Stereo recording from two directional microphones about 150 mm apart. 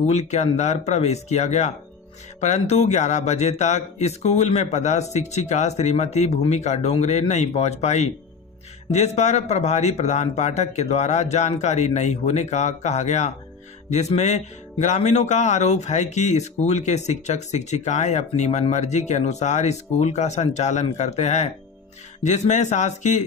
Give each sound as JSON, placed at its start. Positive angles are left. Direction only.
{"t": 0.0, "sound": "speech", "side_deg": 45}